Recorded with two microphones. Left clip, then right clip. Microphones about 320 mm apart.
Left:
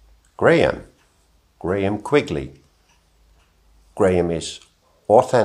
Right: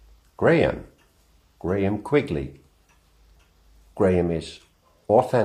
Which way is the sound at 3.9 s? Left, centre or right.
Left.